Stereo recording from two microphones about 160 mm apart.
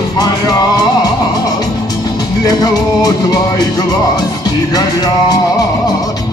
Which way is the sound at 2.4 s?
25° left (ahead or behind).